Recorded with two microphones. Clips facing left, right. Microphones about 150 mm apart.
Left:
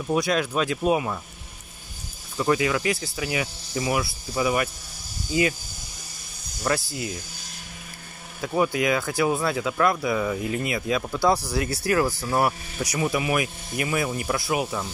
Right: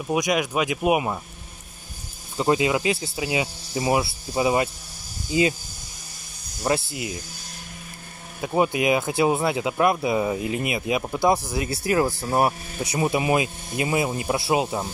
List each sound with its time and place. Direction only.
0.0 s speech: 15° right (ahead or behind)
2.3 s speech: 25° right (ahead or behind)
6.6 s speech: 25° right (ahead or behind)
8.4 s speech: 20° right (ahead or behind)